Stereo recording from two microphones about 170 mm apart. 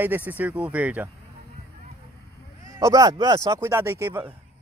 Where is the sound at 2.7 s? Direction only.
20° right (ahead or behind).